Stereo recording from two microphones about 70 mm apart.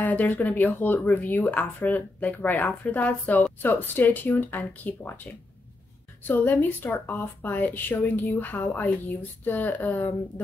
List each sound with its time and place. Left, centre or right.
0.0 s speech: left